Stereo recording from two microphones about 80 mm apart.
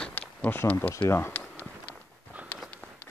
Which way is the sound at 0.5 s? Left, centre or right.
Left.